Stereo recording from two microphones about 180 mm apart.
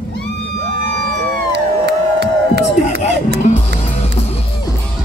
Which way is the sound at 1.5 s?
70° right (ahead or behind).